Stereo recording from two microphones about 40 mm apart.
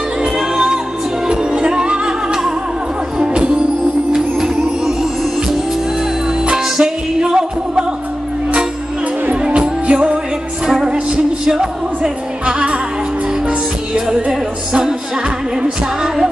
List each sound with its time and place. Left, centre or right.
0.2 s music: centre
4.1 s music: centre
6.5 s music: centre
9.6 s music: right